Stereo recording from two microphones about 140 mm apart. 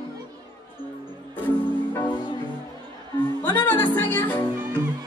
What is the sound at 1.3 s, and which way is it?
Music, 15° left (ahead or behind).